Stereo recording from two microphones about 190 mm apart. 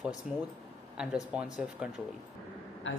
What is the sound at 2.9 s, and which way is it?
Speech, 80° left.